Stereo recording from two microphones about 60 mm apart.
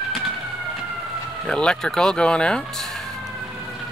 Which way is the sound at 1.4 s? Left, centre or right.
Centre.